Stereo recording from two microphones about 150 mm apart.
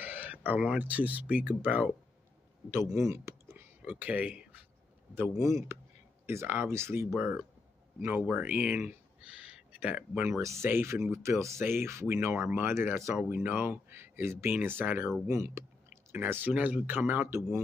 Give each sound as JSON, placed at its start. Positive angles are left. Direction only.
{"t": 0.0, "sound": "speech", "side_deg": -10}
{"t": 5.7, "sound": "a sound", "side_deg": -15}
{"t": 6.2, "sound": "speech", "side_deg": -15}